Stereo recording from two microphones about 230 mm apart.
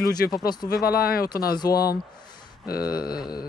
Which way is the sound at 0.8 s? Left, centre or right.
Left.